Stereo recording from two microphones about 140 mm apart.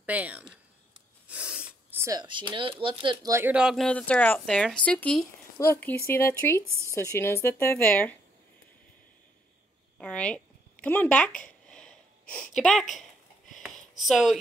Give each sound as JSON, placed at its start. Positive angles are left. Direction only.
{"t": 0.0, "sound": "speech", "side_deg": -10}
{"t": 3.5, "sound": "speech", "side_deg": 0}
{"t": 9.9, "sound": "a sound", "side_deg": 10}
{"t": 14.0, "sound": "speech", "side_deg": 0}